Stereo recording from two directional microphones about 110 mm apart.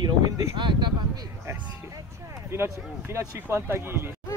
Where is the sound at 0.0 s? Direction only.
45° right (ahead or behind).